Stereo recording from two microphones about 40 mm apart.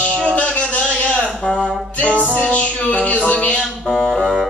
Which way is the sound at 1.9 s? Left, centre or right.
Left.